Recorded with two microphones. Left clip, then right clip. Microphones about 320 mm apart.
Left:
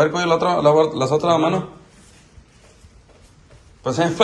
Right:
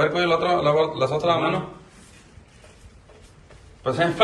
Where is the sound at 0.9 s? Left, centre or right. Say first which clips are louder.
Left 4 dB; centre.